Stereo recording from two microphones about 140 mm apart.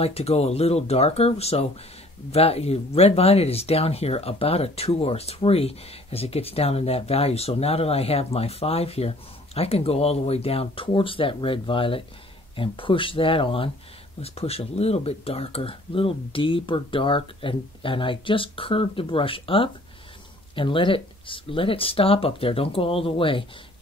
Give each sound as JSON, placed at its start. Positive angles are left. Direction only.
{"t": 0.0, "sound": "speech", "side_deg": 45}